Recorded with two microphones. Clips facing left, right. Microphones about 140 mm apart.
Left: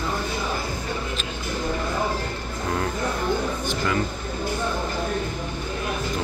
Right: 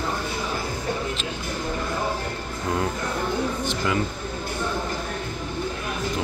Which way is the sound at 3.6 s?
15° right (ahead or behind).